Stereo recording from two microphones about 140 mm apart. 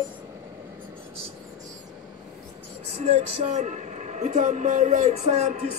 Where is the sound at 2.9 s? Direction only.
50° right (ahead or behind).